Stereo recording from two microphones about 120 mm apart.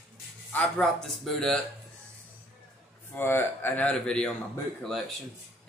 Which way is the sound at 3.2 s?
15° left (ahead or behind).